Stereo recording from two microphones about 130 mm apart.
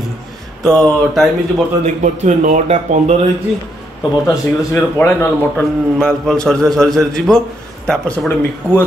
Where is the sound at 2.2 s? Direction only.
65° right (ahead or behind).